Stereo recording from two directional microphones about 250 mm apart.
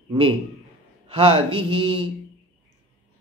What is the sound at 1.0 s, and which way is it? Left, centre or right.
A woman's voice, right.